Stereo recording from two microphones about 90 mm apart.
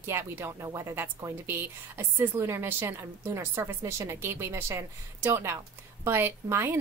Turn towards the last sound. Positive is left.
turn(degrees=-25)  # may be behind; listen again after turning